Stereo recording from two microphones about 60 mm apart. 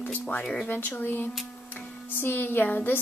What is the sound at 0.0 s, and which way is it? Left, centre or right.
A woman's voice, left.